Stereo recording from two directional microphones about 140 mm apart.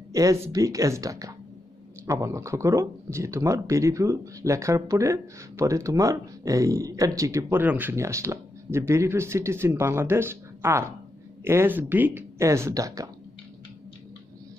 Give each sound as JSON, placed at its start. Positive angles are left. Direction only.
{"t": 0.1, "sound": "speech", "side_deg": -20}